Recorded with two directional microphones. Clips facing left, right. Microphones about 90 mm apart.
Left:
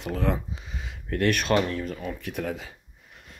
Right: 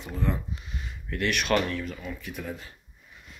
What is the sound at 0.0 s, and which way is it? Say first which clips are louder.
Speech: left 4 dB; 90° left.